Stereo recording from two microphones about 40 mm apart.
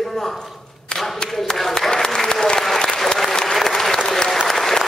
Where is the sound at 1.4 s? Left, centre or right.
Centre.